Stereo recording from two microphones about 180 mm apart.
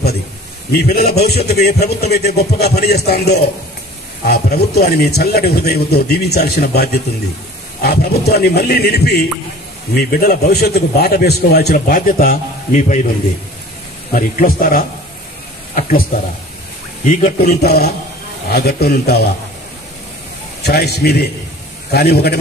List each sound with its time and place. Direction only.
0.7 s a man's voice: 60° left (ahead or behind); by 13.0 s 45° left (ahead or behind)
14.1 s a man's voice: 50° left (ahead or behind)
17.0 s a man's voice: 45° left (ahead or behind)
17.6 s a man's voice: 60° left (ahead or behind)
20.6 s a man's voice: 60° left (ahead or behind)